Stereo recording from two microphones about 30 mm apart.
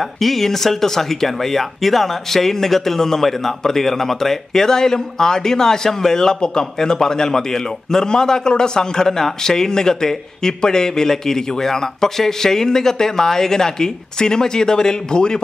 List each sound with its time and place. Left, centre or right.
0.0 s speech: centre; by 15.4 s left